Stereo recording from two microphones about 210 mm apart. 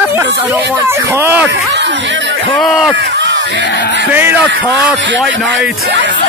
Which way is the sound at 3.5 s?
55° left (ahead or behind).